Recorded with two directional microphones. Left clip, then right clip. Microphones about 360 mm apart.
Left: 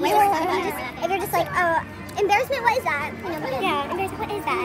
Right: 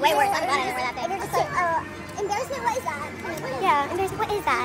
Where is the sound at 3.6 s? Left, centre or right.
Centre.